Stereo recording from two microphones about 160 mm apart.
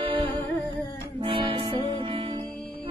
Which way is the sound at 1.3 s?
35° right (ahead or behind).